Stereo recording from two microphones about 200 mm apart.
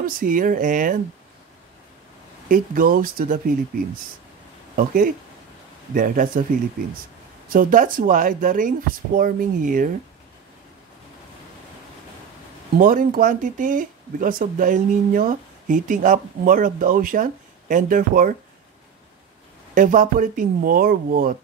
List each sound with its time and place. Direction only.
0.0 s speech: 45° right (ahead or behind)
2.4 s speech: 45° right (ahead or behind)
4.7 s speech: 40° right (ahead or behind)
7.4 s speech: 45° right (ahead or behind)
12.7 s speech: 45° right (ahead or behind)
19.7 s speech: 40° right (ahead or behind)